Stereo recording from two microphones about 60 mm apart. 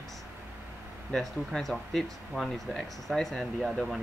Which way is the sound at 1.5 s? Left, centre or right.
Centre.